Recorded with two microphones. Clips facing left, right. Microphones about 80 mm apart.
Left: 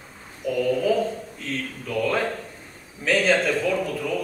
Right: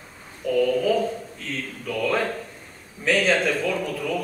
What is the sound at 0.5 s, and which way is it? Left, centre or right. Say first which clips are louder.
Mantra: right 1 dB; centre.